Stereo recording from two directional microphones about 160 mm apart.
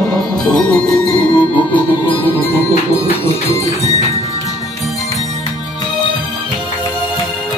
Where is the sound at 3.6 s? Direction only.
45° right (ahead or behind).